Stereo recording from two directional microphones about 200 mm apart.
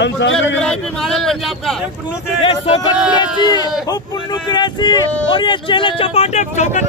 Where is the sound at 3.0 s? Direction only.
20° left (ahead or behind).